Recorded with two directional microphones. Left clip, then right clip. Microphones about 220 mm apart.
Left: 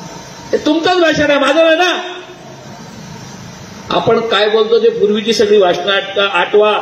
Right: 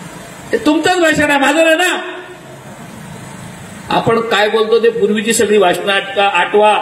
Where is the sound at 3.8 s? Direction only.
50° right (ahead or behind).